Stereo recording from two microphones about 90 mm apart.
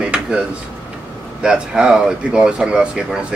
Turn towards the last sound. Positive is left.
turn(degrees=-10)  # may be behind; listen again after turning